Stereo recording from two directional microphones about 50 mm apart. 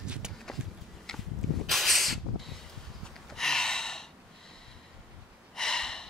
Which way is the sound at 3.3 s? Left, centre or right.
Centre.